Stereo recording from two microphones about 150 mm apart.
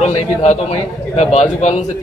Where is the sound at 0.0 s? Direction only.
50° left (ahead or behind).